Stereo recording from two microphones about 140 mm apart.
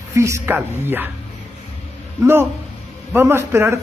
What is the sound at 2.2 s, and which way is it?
A man's voice, 15° right (ahead or behind).